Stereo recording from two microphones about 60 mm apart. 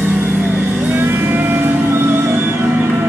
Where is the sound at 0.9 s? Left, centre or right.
Right.